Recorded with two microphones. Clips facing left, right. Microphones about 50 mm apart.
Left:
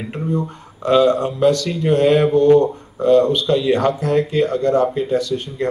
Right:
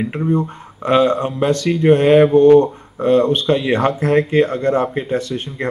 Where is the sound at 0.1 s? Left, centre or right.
Right.